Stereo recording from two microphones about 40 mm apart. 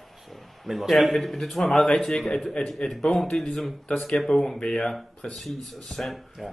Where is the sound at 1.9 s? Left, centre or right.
Centre.